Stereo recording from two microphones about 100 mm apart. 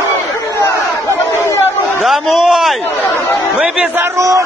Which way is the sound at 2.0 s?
Centre (ahead or behind).